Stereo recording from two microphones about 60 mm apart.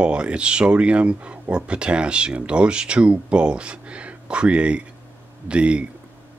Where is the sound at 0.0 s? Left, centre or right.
Centre.